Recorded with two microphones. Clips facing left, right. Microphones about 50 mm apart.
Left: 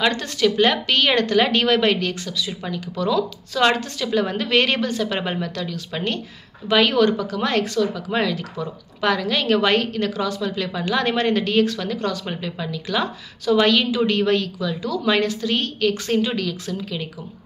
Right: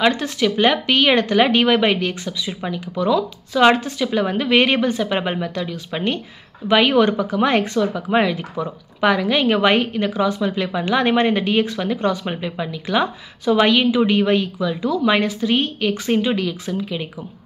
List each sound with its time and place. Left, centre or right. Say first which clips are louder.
0.0 s a woman's voice: right 2 dB; centre